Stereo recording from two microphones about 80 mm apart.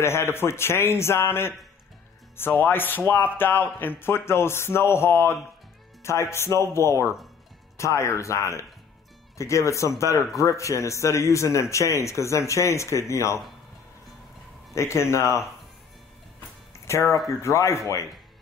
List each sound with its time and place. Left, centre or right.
0.0 s speech: left
14.7 s speech: left
16.7 s music: left
17.4 s speech: left